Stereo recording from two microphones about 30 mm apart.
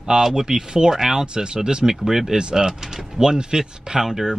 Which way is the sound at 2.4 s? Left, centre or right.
Right.